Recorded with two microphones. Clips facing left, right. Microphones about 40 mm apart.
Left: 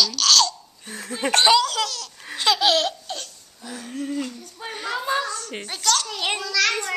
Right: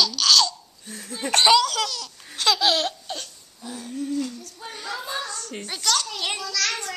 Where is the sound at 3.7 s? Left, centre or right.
Left.